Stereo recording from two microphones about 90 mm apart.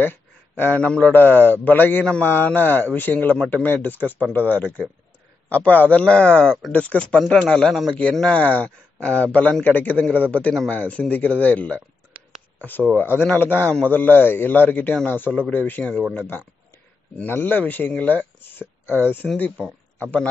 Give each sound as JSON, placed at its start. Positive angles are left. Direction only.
{"t": 0.0, "sound": "speech", "side_deg": 20}
{"t": 8.3, "sound": "speech", "side_deg": 20}